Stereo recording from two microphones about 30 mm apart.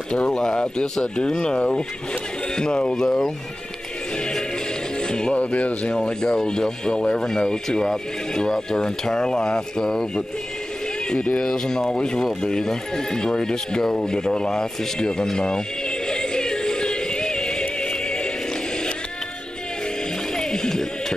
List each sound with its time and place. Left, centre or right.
0.3 s speech: left
3.0 s speech: centre
5.0 s music: left
5.3 s speech: left
5.9 s speech: left
11.4 s speech: centre
16.1 s music: left
20.3 s a sound: centre